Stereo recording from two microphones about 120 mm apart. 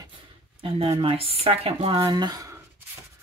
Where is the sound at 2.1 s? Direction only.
35° right (ahead or behind).